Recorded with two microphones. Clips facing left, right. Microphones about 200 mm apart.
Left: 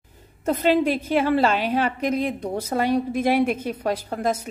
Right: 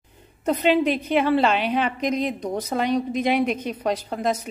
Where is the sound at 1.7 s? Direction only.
10° left (ahead or behind).